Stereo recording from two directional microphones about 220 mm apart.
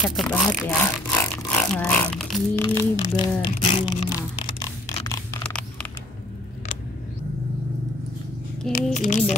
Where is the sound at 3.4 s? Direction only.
20° left (ahead or behind).